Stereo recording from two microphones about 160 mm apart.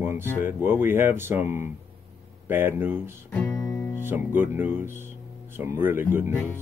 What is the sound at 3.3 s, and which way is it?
Music, 5° left (ahead or behind).